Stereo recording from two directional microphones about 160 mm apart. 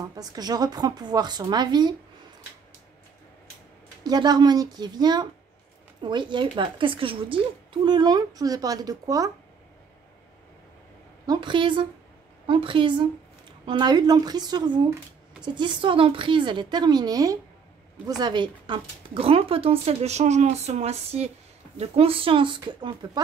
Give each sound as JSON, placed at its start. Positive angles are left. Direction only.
{"t": 0.1, "sound": "a woman's voice", "side_deg": -25}
{"t": 4.0, "sound": "a woman's voice", "side_deg": -25}
{"t": 11.2, "sound": "a woman's voice", "side_deg": -30}